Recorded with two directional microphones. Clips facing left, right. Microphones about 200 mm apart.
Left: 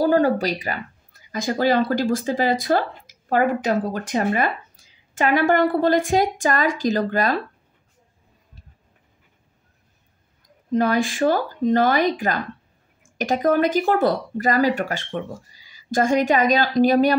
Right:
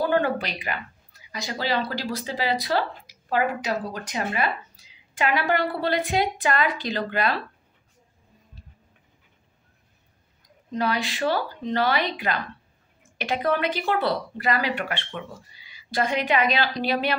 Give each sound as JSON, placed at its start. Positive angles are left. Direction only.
{"t": 0.0, "sound": "speech", "side_deg": 40}
{"t": 10.7, "sound": "speech", "side_deg": 50}